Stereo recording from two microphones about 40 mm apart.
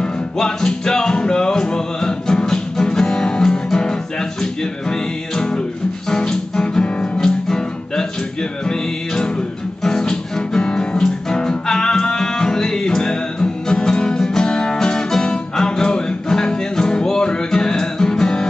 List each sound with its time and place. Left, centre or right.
0.0 s music: centre